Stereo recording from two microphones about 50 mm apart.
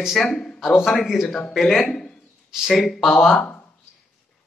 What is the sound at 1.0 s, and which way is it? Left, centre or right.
Speech, centre.